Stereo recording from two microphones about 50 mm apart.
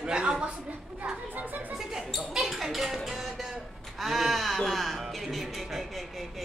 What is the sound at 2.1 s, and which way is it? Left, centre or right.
Music, centre.